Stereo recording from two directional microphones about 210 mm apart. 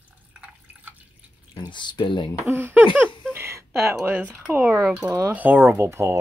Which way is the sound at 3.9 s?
10° right (ahead or behind).